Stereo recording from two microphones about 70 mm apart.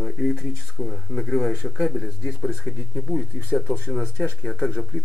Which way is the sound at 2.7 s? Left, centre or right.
Left.